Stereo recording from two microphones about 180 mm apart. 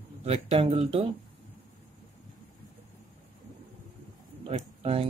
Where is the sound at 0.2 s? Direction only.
35° right (ahead or behind).